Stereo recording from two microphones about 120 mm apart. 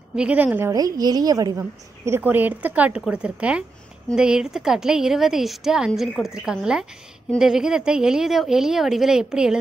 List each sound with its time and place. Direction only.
0.1 s a woman's voice: 10° right (ahead or behind)
0.7 s a woman's voice: 30° right (ahead or behind); by 9.6 s 5° right (ahead or behind)